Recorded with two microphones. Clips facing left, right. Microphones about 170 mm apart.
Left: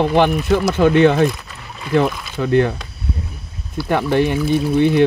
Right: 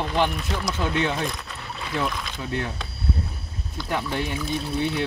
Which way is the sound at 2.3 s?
65° left (ahead or behind).